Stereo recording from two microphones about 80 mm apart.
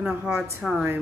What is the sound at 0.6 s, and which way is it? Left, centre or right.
Speech, centre.